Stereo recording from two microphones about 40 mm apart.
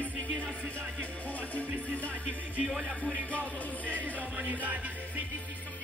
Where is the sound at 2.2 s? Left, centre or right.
Right.